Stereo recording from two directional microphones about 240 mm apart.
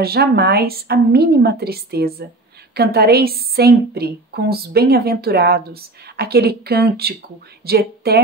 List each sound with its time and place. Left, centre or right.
0.0 s a woman's voice: right